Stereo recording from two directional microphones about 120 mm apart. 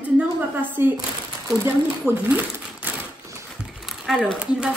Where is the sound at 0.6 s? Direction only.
15° right (ahead or behind).